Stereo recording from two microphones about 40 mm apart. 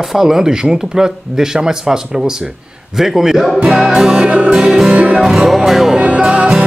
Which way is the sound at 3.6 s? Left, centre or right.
Right.